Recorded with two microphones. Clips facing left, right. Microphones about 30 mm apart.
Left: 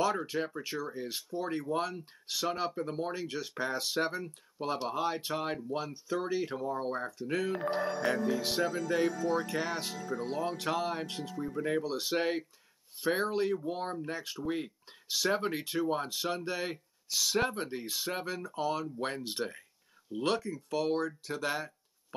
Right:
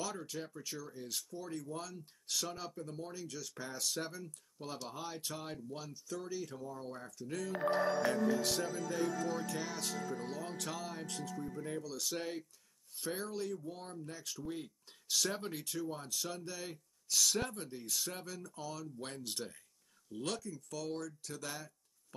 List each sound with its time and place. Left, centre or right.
0.0 s speech: left
2.2 s speech: left
8.4 s speech: left
8.6 s speech: left
9.5 s speech: left
10.0 s speech: left
11.5 s speech: left
15.0 s speech: left
17.1 s speech: left
17.4 s speech: left